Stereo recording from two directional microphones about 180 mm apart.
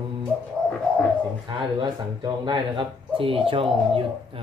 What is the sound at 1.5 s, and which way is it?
Speech, 25° right (ahead or behind).